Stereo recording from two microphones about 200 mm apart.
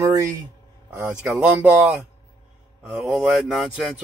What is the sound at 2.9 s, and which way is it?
Speech, centre (ahead or behind).